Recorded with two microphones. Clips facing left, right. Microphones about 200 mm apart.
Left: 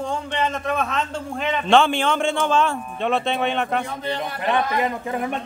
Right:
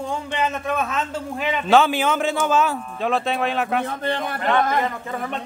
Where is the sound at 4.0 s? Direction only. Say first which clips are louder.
Right 2 dB; 50° right (ahead or behind).